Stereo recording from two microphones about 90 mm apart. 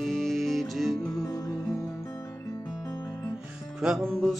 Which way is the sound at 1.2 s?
40° left (ahead or behind).